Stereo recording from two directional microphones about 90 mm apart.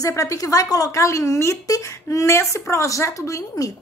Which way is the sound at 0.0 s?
35° left (ahead or behind).